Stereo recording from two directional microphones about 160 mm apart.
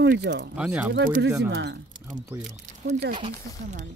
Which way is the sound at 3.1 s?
50° right (ahead or behind).